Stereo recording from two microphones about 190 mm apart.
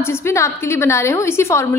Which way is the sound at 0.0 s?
15° left (ahead or behind).